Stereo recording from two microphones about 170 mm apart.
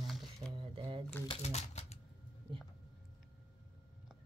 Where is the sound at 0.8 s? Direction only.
30° right (ahead or behind).